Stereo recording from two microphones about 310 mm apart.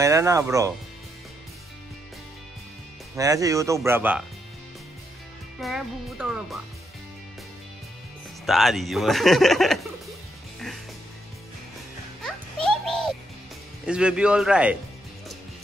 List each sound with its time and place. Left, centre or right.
0.0 s speech: centre
3.2 s speech: centre
5.6 s speech: centre
8.5 s speech: centre
12.2 s music: centre
13.8 s speech: centre